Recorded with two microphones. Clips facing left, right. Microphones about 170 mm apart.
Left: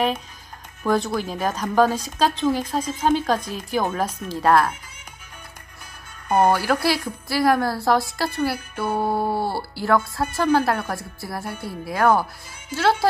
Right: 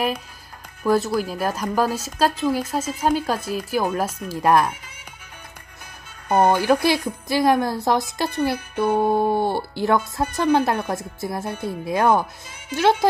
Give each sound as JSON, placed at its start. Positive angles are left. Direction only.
{"t": 0.8, "sound": "speech", "side_deg": -5}
{"t": 6.2, "sound": "speech", "side_deg": -10}